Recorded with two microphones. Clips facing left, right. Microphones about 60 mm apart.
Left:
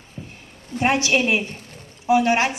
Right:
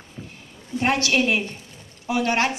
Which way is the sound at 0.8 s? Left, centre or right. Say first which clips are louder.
Left 2 dB; centre.